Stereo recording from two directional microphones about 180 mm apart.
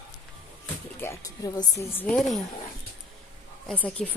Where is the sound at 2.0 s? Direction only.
5° left (ahead or behind).